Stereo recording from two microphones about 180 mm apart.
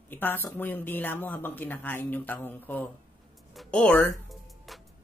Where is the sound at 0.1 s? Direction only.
10° left (ahead or behind).